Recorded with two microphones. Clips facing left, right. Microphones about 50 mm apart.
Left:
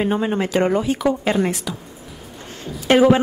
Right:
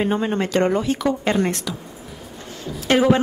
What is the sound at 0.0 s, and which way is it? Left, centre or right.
A woman's voice, centre.